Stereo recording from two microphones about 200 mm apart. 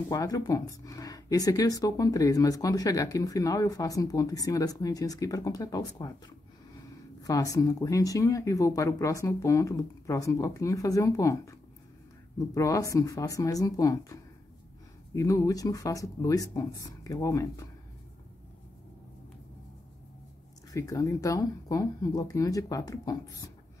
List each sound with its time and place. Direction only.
0.1 s speech: 15° left (ahead or behind)
7.2 s speech: 15° left (ahead or behind)
20.7 s speech: 15° left (ahead or behind)